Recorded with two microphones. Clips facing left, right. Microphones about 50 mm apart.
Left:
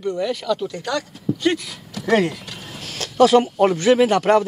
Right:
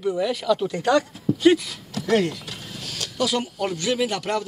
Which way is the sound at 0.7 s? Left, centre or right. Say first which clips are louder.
Right 5 dB; right.